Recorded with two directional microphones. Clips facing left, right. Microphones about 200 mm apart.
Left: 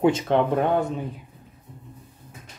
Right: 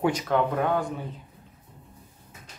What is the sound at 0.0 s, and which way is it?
Speech, 25° left (ahead or behind).